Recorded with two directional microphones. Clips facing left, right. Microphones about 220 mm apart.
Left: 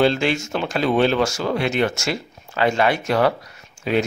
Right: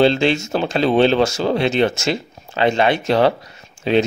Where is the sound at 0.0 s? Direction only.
25° right (ahead or behind).